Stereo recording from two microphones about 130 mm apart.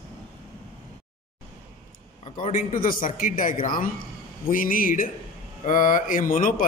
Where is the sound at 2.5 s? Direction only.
90° left.